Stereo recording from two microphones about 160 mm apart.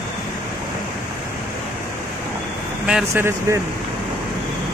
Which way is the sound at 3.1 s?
15° right (ahead or behind).